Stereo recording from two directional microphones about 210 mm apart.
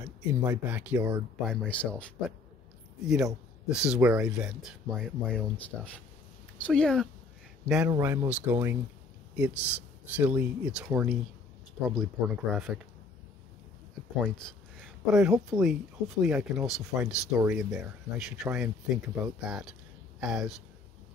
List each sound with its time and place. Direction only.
0.3 s speech: 10° right (ahead or behind)
1.4 s speech: 5° left (ahead or behind)
14.3 s a sound: centre (ahead or behind)
15.6 s speech: centre (ahead or behind)